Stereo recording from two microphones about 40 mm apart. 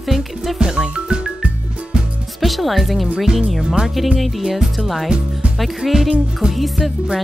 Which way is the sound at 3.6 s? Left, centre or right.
Right.